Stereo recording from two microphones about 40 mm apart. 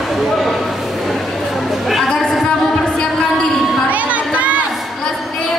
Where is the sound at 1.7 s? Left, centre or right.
Centre.